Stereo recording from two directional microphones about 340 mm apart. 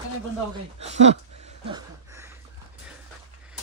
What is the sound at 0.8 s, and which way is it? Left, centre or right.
Speech, centre.